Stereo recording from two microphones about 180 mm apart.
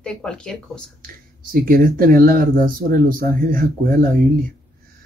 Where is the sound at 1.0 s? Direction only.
50° right (ahead or behind).